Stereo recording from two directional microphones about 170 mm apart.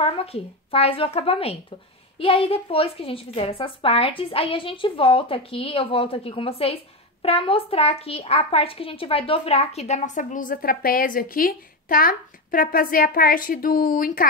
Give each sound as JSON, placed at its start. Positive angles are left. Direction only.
{"t": 0.0, "sound": "a woman's voice", "side_deg": 35}